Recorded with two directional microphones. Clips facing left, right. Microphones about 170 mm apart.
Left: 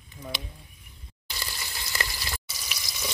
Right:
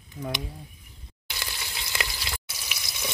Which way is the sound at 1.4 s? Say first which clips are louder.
Right 1 dB; 10° right (ahead or behind).